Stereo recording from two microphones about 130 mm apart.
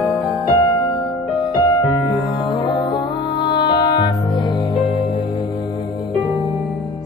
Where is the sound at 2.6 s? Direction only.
35° left (ahead or behind).